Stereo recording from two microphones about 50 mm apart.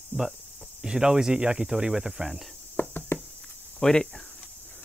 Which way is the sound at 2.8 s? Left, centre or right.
Left.